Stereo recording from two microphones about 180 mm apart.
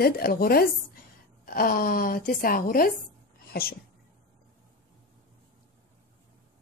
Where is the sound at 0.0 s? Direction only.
55° left (ahead or behind).